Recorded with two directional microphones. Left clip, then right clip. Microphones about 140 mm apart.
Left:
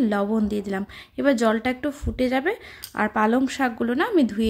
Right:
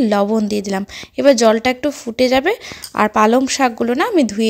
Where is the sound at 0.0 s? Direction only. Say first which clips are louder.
Right 8 dB; 30° right (ahead or behind).